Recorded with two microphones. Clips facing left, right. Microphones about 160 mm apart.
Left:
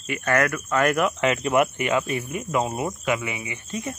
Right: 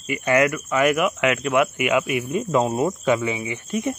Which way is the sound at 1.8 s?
10° right (ahead or behind).